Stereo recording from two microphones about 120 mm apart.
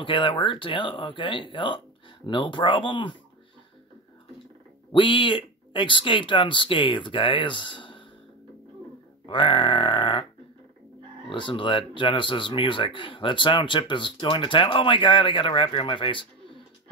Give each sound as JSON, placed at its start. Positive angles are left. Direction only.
{"t": 0.0, "sound": "speech", "side_deg": 40}
{"t": 4.9, "sound": "speech", "side_deg": 45}
{"t": 9.2, "sound": "speech", "side_deg": 40}
{"t": 11.2, "sound": "speech", "side_deg": 45}